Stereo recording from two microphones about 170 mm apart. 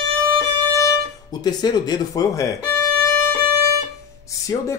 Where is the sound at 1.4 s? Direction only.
25° left (ahead or behind).